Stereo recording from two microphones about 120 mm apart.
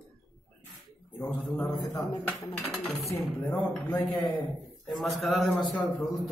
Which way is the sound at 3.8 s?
40° left (ahead or behind).